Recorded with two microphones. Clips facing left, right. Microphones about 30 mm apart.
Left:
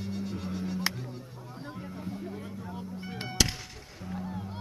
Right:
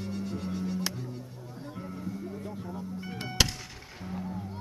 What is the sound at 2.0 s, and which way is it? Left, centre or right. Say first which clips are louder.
Music: right 1 dB; left.